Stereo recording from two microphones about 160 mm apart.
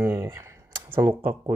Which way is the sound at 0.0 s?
15° right (ahead or behind).